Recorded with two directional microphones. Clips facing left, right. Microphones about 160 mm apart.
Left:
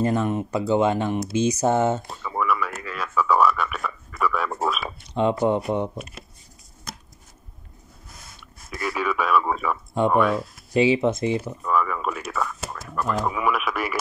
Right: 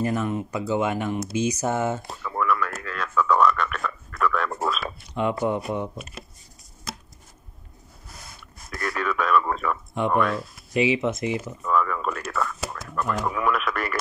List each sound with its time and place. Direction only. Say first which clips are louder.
0.0 s speech: left 3 dB; 30° left (ahead or behind)
2.2 s a sound: even; 5° left (ahead or behind)
5.1 s speech: left 4 dB; 25° left (ahead or behind)
8.6 s radio: left 2 dB; 5° left (ahead or behind)
10.1 s speech: left 2 dB; 5° left (ahead or behind)
10.7 s speech: left 3 dB; 30° left (ahead or behind)
11.6 s speech: right 2 dB; 5° left (ahead or behind)